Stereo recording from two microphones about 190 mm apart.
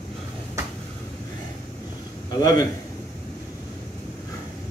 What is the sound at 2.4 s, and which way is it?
Speech, 20° left (ahead or behind).